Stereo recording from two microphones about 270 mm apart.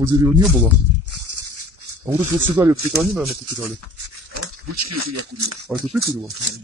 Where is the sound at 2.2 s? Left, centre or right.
Right.